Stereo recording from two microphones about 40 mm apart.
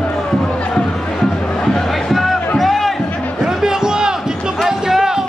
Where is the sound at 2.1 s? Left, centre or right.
Centre.